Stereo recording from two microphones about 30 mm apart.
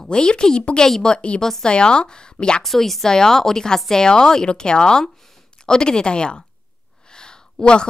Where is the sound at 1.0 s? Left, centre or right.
Left.